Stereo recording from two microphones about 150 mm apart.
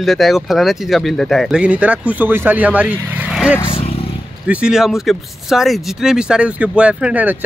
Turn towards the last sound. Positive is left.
turn(degrees=-10)  # may be behind; listen again after turning